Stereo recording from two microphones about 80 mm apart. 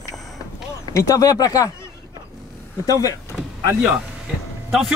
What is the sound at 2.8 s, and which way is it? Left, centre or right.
Speech, left.